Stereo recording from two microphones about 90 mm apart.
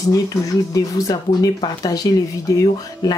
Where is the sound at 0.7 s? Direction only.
40° left (ahead or behind).